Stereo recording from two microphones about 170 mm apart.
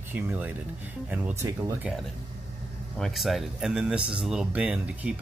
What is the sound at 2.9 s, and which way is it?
Speech, centre (ahead or behind).